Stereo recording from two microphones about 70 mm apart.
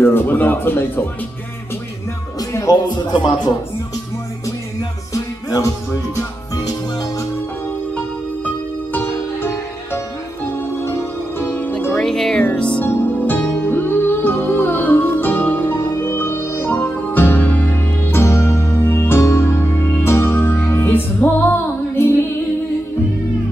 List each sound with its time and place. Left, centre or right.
0.0 s speech: left
2.7 s speech: left
5.1 s music: left
11.3 s music: left
12.0 s music: centre
12.8 s music: left